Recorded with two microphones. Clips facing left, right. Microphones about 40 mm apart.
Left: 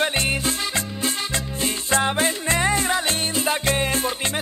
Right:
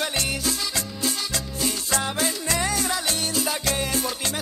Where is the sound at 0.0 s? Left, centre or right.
Left.